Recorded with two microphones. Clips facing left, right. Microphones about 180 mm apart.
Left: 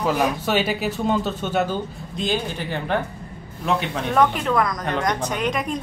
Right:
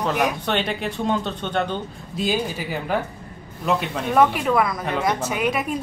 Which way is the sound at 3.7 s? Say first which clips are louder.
Even; centre (ahead or behind).